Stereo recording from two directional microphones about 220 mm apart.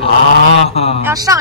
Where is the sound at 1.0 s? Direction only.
15° right (ahead or behind).